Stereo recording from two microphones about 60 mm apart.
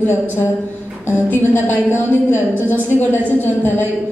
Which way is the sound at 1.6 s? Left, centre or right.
Left.